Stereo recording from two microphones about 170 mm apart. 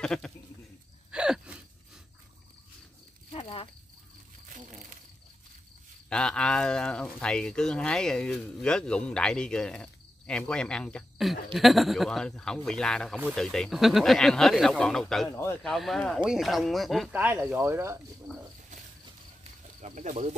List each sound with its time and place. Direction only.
0.0 s speech: 5° left (ahead or behind)
1.1 s wheeze: 5° right (ahead or behind)
3.3 s a sound: 35° left (ahead or behind)
6.0 s speech: 5° left (ahead or behind)
15.2 s speech: 15° left (ahead or behind)
15.6 s speech: centre (ahead or behind)
17.1 s speech: 10° right (ahead or behind)
19.8 s speech: 45° right (ahead or behind)